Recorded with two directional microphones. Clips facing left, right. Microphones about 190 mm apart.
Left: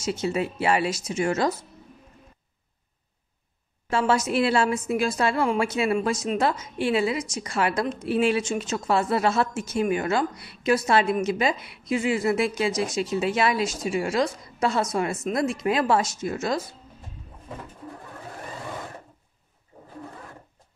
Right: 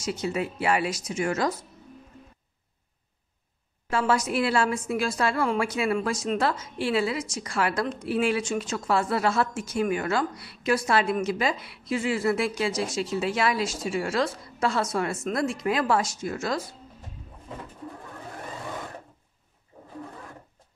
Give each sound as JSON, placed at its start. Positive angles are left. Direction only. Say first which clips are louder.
{"t": 0.0, "sound": "a woman's voice", "louder": "left 2 dB", "side_deg": 25}
{"t": 3.9, "sound": "a woman's voice", "louder": "left 2 dB", "side_deg": 25}